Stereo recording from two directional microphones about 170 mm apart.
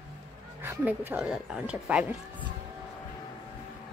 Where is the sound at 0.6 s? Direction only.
10° right (ahead or behind).